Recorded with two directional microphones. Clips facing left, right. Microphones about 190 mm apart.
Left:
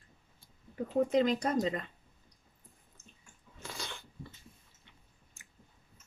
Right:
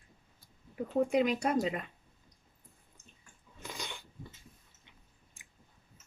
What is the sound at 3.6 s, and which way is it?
Dog, 15° right (ahead or behind).